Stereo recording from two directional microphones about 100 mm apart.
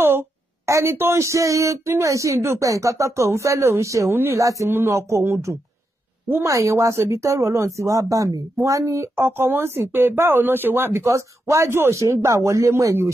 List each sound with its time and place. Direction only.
0.0 s speech: 25° right (ahead or behind)